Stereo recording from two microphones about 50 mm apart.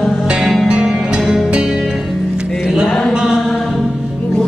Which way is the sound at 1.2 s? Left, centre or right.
Centre.